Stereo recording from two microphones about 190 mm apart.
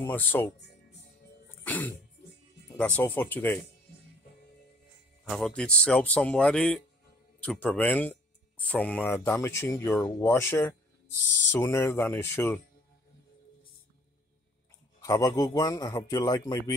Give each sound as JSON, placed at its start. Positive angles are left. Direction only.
{"t": 0.0, "sound": "speech", "side_deg": 10}
{"t": 1.6, "sound": "music", "side_deg": 10}
{"t": 2.8, "sound": "speech", "side_deg": 10}
{"t": 5.2, "sound": "speech", "side_deg": 0}
{"t": 15.0, "sound": "a man's voice", "side_deg": 20}